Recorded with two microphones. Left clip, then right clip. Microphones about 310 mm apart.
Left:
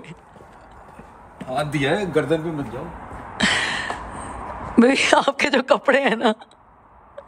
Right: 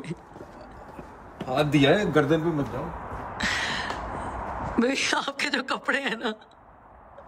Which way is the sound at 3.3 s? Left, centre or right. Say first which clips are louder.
Left 7 dB; centre.